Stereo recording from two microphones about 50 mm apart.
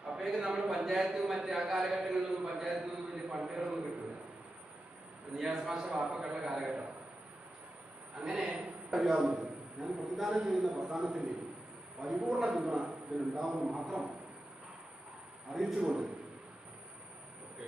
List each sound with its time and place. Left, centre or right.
0.4 s a man's voice: centre
5.3 s a man's voice: centre
8.2 s a man's voice: centre
11.1 s a man's voice: centre
15.5 s a man's voice: centre